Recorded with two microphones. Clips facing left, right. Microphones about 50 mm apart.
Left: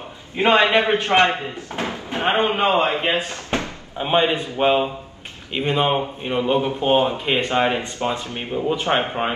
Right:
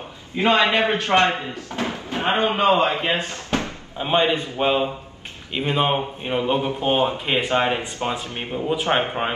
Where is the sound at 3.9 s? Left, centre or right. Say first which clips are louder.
Left 1 dB; centre.